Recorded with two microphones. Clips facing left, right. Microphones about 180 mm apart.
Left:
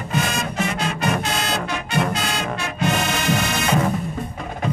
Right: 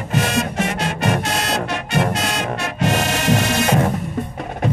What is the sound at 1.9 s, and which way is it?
Music, 70° right (ahead or behind).